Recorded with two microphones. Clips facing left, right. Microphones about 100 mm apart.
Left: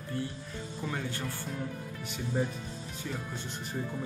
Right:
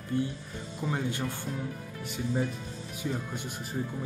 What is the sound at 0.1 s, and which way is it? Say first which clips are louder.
A man's voice: right 6 dB; 20° right (ahead or behind).